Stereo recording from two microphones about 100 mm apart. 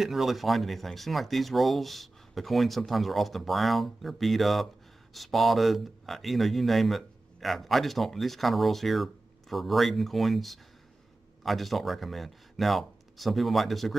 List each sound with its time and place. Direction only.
0.0 s speech: centre (ahead or behind)